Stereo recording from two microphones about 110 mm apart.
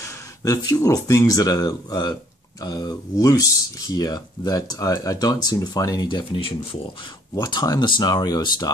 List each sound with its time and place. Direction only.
0.0 s speech: 30° left (ahead or behind); by 6.8 s 50° left (ahead or behind)
7.3 s speech: 40° left (ahead or behind)